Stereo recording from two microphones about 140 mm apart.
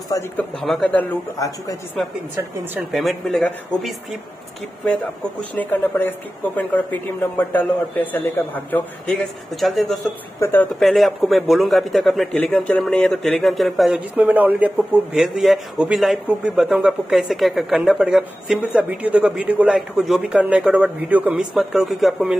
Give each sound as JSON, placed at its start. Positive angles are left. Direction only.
{"t": 0.4, "sound": "a woman's voice", "side_deg": 5}
{"t": 2.9, "sound": "a man's voice", "side_deg": 0}
{"t": 5.6, "sound": "a woman's voice", "side_deg": 15}
{"t": 9.6, "sound": "a man's voice", "side_deg": 0}
{"t": 10.4, "sound": "a woman's voice", "side_deg": 15}
{"t": 10.8, "sound": "a man's voice", "side_deg": 0}
{"t": 14.2, "sound": "a man's voice", "side_deg": -10}